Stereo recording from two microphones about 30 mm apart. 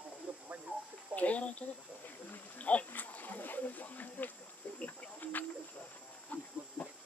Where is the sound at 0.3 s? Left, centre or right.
Right.